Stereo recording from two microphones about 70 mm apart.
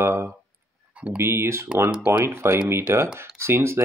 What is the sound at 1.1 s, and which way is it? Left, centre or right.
Speech, right.